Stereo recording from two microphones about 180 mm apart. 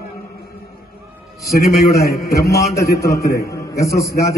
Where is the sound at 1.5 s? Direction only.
60° left (ahead or behind).